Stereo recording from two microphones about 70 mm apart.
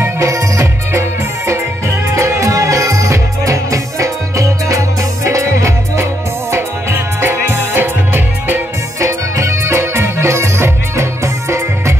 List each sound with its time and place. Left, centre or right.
0.2 s music: right
2.1 s music: right
6.5 s music: right
9.0 s music: right